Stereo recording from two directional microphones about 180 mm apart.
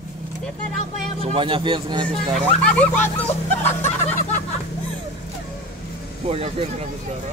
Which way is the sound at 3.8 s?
10° left (ahead or behind).